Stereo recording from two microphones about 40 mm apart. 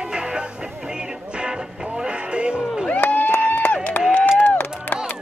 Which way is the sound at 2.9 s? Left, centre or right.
Left.